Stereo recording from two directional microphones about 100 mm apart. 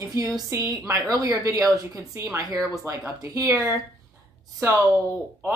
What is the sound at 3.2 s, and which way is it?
Speech, 35° right (ahead or behind).